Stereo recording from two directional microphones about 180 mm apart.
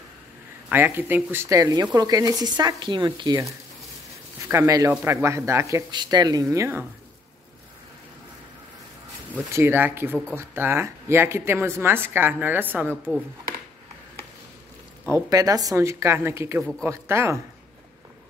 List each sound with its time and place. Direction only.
0.7 s a woman's voice: 10° right (ahead or behind)
9.3 s a woman's voice: 15° right (ahead or behind)
12.9 s speech: 5° left (ahead or behind)
15.0 s a woman's voice: 15° right (ahead or behind)